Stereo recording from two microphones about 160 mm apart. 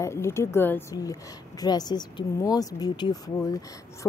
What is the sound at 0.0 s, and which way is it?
A woman's voice, 15° left (ahead or behind).